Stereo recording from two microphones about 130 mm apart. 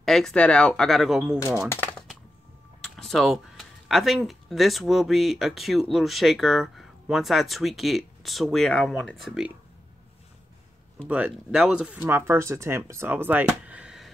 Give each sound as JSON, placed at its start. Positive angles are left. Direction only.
{"t": 0.0, "sound": "speech", "side_deg": 5}
{"t": 3.0, "sound": "speech", "side_deg": 0}
{"t": 11.1, "sound": "speech", "side_deg": -10}
{"t": 13.5, "sound": "a sound", "side_deg": -10}